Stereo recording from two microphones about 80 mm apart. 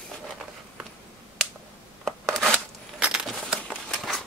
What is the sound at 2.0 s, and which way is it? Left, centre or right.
Rub, centre.